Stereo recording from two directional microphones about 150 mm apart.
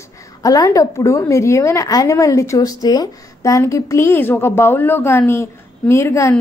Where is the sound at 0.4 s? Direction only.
25° left (ahead or behind).